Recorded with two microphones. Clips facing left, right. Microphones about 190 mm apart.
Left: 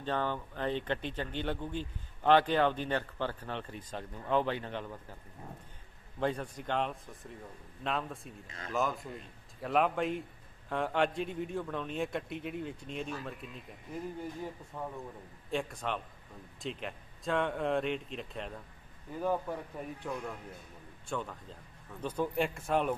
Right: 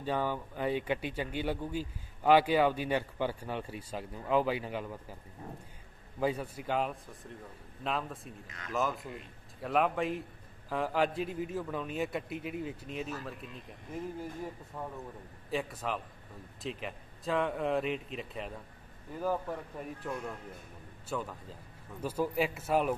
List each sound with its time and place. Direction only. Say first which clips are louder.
0.0 s speech: right 1 dB; 10° right (ahead or behind)
6.1 s a man's voice: right 1 dB; 5° right (ahead or behind)
8.5 s speech: left 3 dB; 30° left (ahead or behind)
8.7 s a man's voice: even; centre (ahead or behind)
14.7 s a man's voice: left 1 dB; 5° right (ahead or behind)